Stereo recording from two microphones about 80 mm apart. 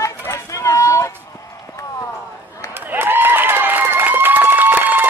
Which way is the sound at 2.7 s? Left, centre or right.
Right.